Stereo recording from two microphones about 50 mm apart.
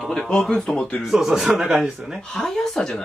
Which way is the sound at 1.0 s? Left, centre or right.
Centre.